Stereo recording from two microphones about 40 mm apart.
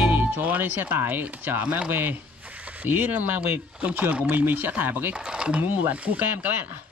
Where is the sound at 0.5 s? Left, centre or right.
Right.